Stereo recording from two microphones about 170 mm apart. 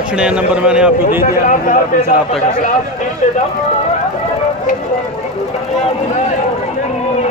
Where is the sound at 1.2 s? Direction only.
50° left (ahead or behind).